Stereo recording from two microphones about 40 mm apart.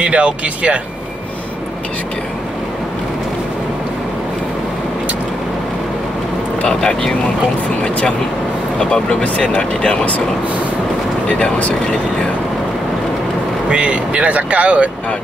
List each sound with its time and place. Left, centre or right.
0.0 s speech: right
6.6 s speech: left
8.7 s speech: centre
11.3 s speech: left
13.7 s speech: right